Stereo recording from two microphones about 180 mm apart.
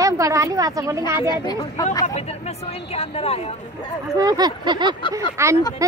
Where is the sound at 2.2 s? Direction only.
35° left (ahead or behind).